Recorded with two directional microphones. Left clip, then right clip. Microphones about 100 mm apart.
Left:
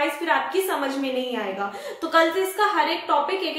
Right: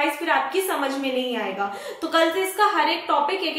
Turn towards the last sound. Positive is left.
turn(degrees=0)  # may be behind; listen again after turning